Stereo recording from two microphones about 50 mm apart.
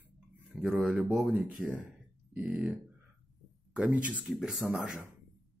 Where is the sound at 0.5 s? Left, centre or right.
Centre.